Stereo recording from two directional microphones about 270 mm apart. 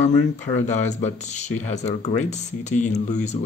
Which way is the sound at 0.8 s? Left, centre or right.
Left.